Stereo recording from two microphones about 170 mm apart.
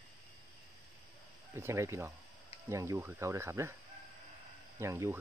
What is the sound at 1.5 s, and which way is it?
Speech, 15° right (ahead or behind).